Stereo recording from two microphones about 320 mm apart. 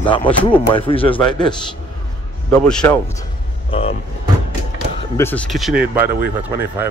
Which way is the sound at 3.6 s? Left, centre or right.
Centre.